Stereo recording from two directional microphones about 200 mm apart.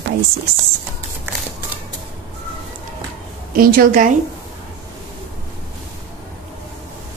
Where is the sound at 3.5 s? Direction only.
45° right (ahead or behind).